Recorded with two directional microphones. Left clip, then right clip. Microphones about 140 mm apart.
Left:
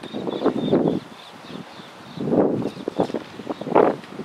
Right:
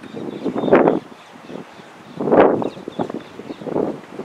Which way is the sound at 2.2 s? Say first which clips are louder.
Right 7 dB; 60° right (ahead or behind).